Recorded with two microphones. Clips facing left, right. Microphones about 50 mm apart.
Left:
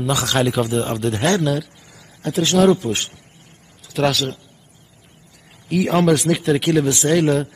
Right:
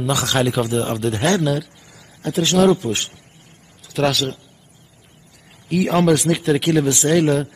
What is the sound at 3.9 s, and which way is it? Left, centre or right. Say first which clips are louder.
Speech: even; centre.